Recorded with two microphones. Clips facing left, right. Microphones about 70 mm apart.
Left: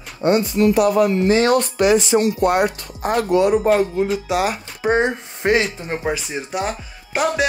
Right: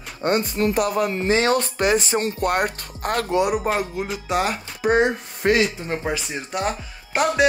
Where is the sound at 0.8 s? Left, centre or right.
Left.